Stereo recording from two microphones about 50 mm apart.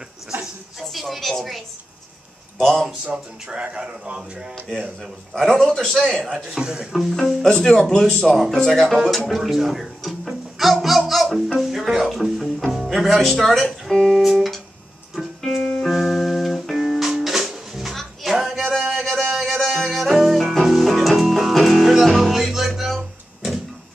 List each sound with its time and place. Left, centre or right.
0.8 s a sound: centre
2.6 s speech: centre
3.1 s speech: right
4.6 s a man's voice: centre
5.3 s a man's voice: centre
6.3 s a man's voice: centre
6.9 s a man's voice: centre
7.4 s a man's voice: centre
9.3 s music: centre
18.9 s a sound: centre
19.3 s music: centre